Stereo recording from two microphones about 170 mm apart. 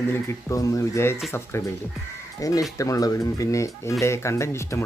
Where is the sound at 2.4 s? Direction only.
20° left (ahead or behind).